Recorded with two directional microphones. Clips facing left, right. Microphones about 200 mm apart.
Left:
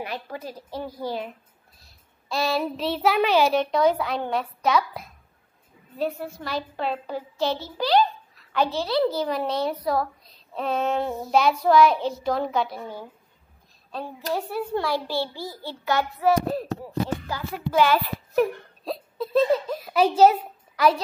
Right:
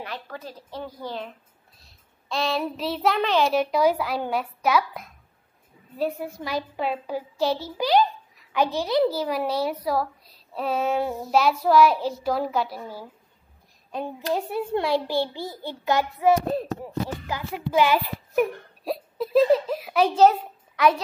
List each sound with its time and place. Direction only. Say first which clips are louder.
0.0 s a woman's voice: left 3 dB; 15° left (ahead or behind)
3.5 s a woman's voice: even; 5° right (ahead or behind)
13.9 s a child's voice: right 2 dB; 20° right (ahead or behind)
19.7 s a sound: left 1 dB; centre (ahead or behind)